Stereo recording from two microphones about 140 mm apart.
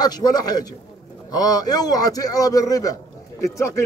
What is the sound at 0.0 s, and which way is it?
Speech, 30° left (ahead or behind).